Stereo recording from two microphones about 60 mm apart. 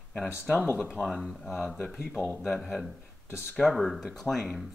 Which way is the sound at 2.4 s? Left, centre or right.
Centre.